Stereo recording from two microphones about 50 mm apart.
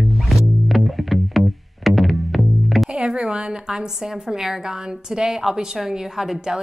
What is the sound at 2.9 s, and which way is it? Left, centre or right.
A woman's voice, centre.